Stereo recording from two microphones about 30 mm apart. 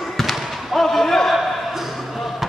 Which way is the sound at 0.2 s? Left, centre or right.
Centre.